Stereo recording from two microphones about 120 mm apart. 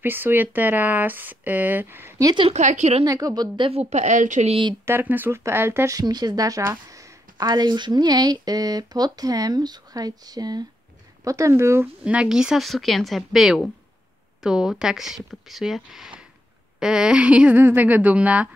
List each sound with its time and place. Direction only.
0.0 s speech: 15° right (ahead or behind)
2.2 s speech: 45° right (ahead or behind)
2.5 s a woman's voice: 80° right
3.1 s speech: 30° right (ahead or behind)
3.5 s speech: 45° right (ahead or behind)
3.9 s a woman's voice: 80° right
4.5 s speech: 45° right (ahead or behind)
4.8 s speech: 15° right (ahead or behind)
5.9 s speech: 35° right (ahead or behind)
12.0 s speech: 10° right (ahead or behind)